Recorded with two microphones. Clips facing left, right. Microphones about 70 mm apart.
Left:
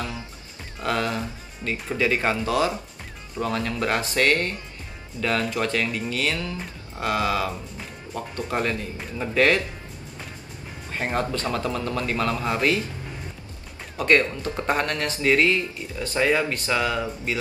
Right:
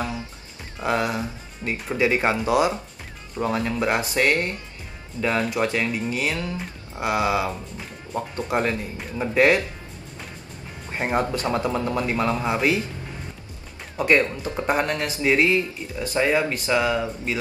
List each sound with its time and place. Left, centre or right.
0.8 s speech: centre
10.9 s speech: right
13.9 s speech: centre